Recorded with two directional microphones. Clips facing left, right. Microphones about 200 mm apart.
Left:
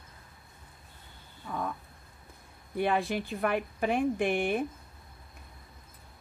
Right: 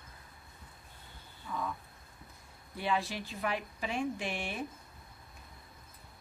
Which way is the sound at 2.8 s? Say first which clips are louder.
Left 6 dB; 55° left (ahead or behind).